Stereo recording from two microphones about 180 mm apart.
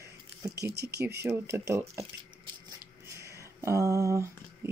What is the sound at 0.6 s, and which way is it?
Speech, 65° right (ahead or behind).